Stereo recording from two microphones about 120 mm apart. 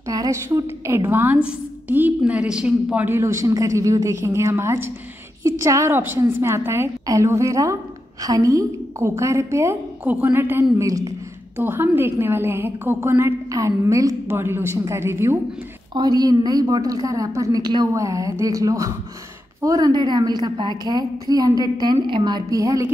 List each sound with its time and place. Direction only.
0.0 s a woman's voice: 30° right (ahead or behind)
11.5 s a woman's voice: 15° right (ahead or behind)
15.9 s a woman's voice: 35° right (ahead or behind)